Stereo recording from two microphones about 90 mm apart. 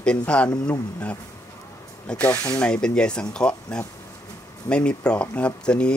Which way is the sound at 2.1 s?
15° left (ahead or behind).